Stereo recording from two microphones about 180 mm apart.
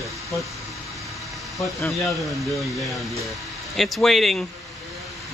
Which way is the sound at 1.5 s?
20° left (ahead or behind).